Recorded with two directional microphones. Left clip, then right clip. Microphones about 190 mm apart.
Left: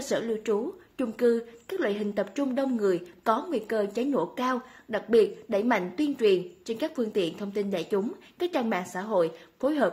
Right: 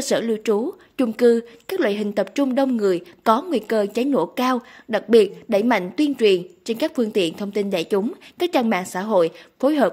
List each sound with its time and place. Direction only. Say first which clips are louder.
0.1 s a woman's voice: right 7 dB; 50° right (ahead or behind)